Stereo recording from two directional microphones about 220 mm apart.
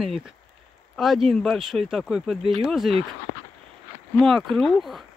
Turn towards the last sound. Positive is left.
turn(degrees=0)  # may be behind; listen again after turning